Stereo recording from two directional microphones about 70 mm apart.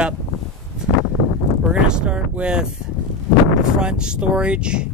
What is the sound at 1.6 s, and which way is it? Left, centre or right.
Speech, centre.